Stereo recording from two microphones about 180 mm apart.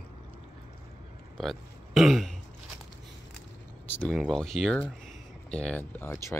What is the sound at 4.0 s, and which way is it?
Speech, centre (ahead or behind).